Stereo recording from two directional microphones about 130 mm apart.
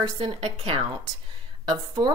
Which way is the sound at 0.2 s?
40° right (ahead or behind).